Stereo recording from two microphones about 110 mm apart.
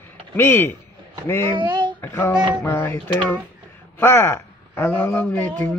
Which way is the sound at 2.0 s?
20° left (ahead or behind).